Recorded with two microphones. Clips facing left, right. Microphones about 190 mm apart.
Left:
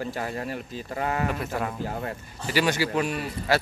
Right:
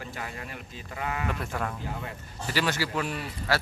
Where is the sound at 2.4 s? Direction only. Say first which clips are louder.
Left 4 dB; 15° left (ahead or behind).